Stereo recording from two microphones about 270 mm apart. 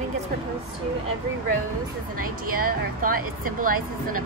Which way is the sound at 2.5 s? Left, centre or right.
Right.